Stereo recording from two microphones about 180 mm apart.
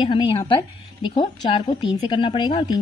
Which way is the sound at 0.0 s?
25° left (ahead or behind).